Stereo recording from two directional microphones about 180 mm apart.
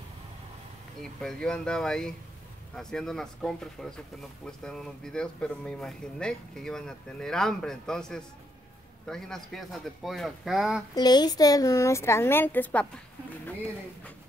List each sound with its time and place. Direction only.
1.2 s speech: 5° left (ahead or behind)
11.0 s a woman's voice: 20° left (ahead or behind)